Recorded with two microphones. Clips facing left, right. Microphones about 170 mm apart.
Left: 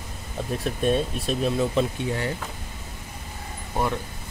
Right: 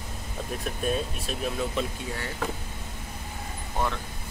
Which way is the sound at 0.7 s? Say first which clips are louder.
Left 6 dB; 30° left (ahead or behind).